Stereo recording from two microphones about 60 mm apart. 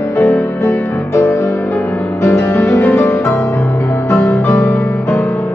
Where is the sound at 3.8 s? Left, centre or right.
Left.